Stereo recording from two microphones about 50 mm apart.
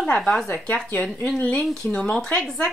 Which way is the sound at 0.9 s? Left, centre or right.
Left.